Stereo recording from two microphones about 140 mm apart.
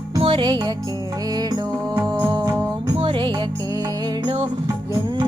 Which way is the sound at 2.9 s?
40° right (ahead or behind).